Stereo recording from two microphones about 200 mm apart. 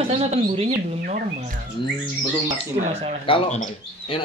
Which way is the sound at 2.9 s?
30° right (ahead or behind).